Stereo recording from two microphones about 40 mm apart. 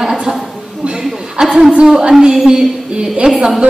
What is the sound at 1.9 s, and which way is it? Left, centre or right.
Speech, centre.